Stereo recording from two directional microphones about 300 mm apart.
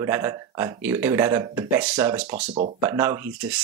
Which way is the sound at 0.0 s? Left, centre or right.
Centre.